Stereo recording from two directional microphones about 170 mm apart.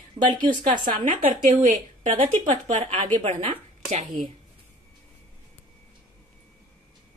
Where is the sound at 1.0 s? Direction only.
50° right (ahead or behind); by 3.5 s 35° right (ahead or behind).